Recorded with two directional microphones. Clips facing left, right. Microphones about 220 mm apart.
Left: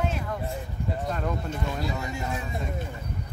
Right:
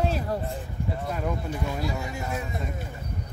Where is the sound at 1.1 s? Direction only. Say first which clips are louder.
Right 1 dB; 10° right (ahead or behind).